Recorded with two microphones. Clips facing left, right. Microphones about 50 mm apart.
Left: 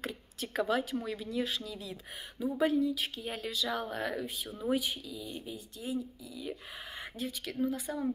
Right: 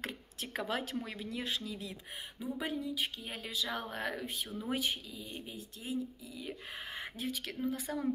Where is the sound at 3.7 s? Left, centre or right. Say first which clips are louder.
Left 3 dB; right.